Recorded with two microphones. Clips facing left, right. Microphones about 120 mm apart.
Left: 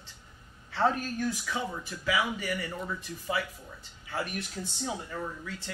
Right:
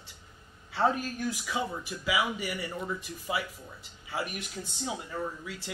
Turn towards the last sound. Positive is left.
turn(degrees=-10)  # may be behind; listen again after turning